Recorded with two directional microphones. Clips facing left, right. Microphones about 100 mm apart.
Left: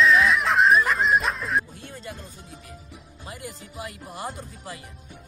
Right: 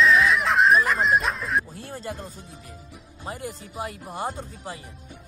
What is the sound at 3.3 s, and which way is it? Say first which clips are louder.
Speech: right 5 dB; 35° right (ahead or behind).